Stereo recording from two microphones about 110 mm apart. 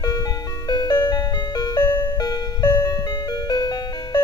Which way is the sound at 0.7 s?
40° left (ahead or behind).